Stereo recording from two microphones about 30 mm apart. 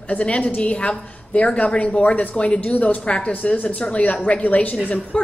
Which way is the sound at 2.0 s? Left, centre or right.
Left.